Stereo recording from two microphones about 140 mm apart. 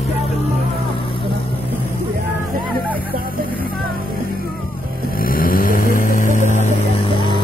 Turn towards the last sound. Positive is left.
turn(degrees=60)  # may be behind; listen again after turning